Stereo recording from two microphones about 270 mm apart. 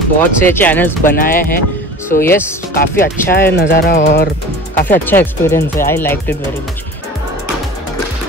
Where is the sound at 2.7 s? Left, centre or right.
Left.